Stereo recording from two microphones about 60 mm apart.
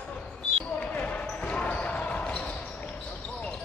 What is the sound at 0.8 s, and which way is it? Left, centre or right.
Basketball bounce, left.